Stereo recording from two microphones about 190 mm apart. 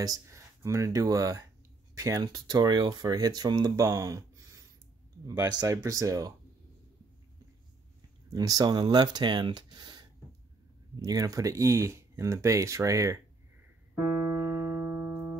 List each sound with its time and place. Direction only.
0.0 s speech: 15° right (ahead or behind)
8.3 s speech: 20° right (ahead or behind)
14.3 s music: 15° right (ahead or behind)